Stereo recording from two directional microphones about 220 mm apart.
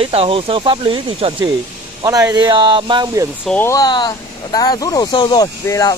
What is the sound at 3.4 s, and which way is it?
Speech, 10° left (ahead or behind).